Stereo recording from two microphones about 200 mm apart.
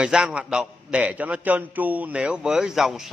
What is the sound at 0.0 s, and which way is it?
A man's voice, 5° right (ahead or behind).